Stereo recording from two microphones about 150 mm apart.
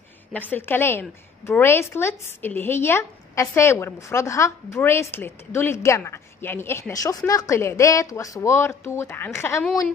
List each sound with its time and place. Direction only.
0.3 s a woman's voice: 10° left (ahead or behind)